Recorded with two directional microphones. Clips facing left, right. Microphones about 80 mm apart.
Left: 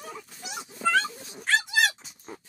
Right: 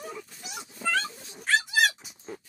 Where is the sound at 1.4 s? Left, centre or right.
Centre.